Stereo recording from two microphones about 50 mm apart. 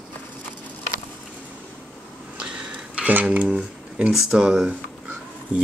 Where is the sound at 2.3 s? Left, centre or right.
Centre.